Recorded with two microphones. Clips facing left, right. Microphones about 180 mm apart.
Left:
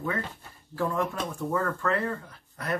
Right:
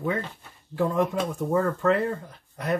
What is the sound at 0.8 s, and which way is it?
Speech, 20° right (ahead or behind).